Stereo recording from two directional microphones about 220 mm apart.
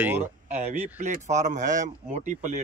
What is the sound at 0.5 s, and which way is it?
Speech, 30° right (ahead or behind).